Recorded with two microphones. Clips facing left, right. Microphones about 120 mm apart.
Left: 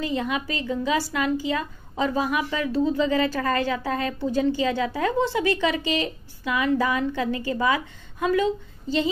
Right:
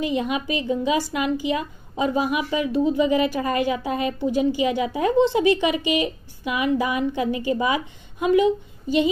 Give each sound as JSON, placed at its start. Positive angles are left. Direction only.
{"t": 0.0, "sound": "a woman's voice", "side_deg": -20}